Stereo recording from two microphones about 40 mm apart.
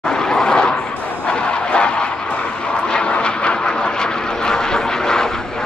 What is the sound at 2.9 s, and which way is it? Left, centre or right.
Vehicle, left.